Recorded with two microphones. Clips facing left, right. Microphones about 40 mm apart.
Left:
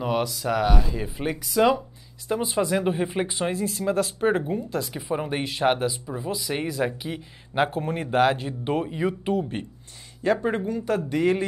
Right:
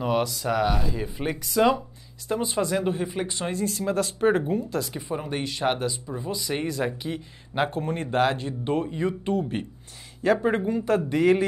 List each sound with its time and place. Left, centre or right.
0.0 s speech: centre
2.8 s speech: centre
5.1 s speech: centre
10.2 s speech: centre